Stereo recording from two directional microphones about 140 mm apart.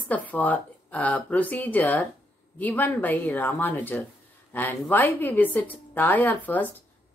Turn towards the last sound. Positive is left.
turn(degrees=15)  # may be behind; listen again after turning